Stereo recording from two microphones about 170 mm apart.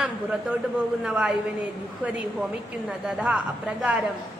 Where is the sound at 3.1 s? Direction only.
5° right (ahead or behind).